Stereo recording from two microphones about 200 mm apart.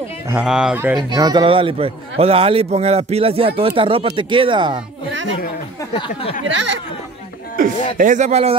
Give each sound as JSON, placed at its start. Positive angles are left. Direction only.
{"t": 0.3, "sound": "speech", "side_deg": -5}
{"t": 1.2, "sound": "a man's voice", "side_deg": -25}
{"t": 5.9, "sound": "speech", "side_deg": 25}
{"t": 7.5, "sound": "speech", "side_deg": -40}